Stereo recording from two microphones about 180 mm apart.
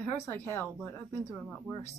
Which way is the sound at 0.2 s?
15° left (ahead or behind).